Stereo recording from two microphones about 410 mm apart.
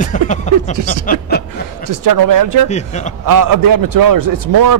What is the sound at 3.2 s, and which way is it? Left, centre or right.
Speech, right.